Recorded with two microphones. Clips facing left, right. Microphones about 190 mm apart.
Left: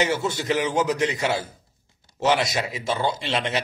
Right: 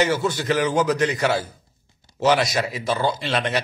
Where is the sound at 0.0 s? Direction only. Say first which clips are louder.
Right 3 dB; 25° left (ahead or behind).